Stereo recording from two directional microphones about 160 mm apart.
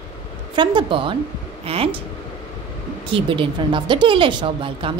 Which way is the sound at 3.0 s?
35° right (ahead or behind).